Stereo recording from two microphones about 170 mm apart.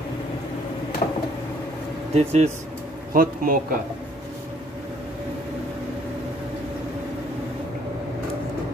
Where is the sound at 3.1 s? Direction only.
55° right (ahead or behind).